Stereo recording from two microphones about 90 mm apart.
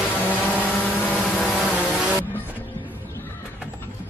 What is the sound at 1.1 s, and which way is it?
Vehicle, centre (ahead or behind).